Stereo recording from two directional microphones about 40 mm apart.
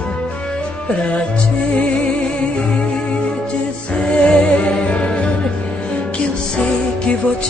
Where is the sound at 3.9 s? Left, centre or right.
Left.